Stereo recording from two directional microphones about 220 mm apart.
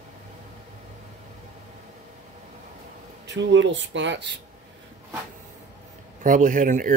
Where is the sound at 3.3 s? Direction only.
55° right (ahead or behind).